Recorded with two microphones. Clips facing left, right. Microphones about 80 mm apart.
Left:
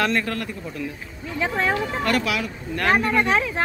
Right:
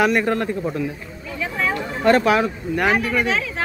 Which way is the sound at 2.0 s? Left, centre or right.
Right.